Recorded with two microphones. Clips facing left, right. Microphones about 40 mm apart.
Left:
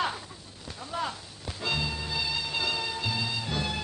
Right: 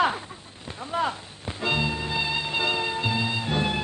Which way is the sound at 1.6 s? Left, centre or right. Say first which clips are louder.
Right 5 dB; right.